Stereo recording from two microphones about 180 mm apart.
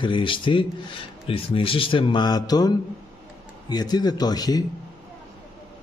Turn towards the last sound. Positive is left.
turn(degrees=20)  # may be behind; listen again after turning